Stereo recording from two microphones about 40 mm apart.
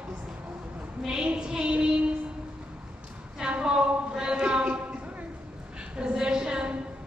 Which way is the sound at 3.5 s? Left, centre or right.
Right.